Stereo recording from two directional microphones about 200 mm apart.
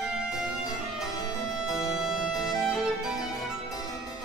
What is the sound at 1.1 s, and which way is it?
Music, 20° left (ahead or behind).